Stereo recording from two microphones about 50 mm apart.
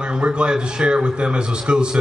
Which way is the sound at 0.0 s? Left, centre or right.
Centre.